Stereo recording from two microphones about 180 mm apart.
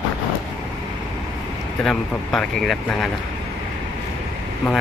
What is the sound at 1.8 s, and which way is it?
Speech, 5° left (ahead or behind).